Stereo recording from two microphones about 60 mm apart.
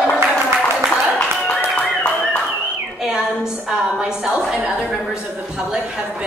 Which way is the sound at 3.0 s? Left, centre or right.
Centre.